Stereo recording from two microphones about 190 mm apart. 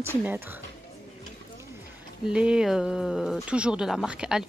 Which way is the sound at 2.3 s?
5° right (ahead or behind).